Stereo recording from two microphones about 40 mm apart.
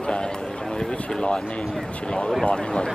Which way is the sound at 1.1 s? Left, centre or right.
Left.